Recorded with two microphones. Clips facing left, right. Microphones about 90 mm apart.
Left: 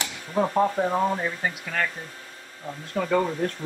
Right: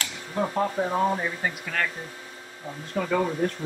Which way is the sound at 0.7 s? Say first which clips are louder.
Left 1 dB; 5° left (ahead or behind).